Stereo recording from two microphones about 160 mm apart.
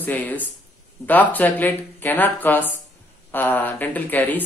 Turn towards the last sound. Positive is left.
turn(degrees=10)  # may be behind; listen again after turning